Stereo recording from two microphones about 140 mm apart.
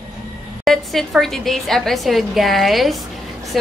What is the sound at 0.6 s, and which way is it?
A woman's voice, centre (ahead or behind).